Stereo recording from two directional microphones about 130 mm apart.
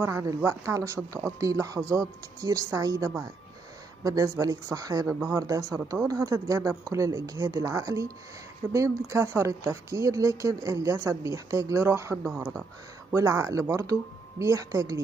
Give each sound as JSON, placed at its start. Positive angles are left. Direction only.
{"t": 0.0, "sound": "speech", "side_deg": -20}